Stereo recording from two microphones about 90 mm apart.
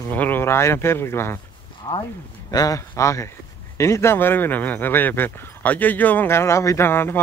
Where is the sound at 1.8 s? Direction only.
40° left (ahead or behind).